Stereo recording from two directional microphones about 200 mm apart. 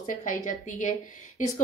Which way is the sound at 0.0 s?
40° left (ahead or behind).